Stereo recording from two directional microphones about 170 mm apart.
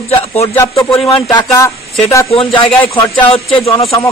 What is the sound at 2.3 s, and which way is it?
Speech, 35° left (ahead or behind).